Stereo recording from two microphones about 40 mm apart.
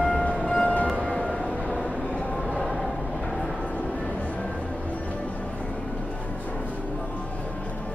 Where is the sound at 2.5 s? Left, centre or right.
Centre.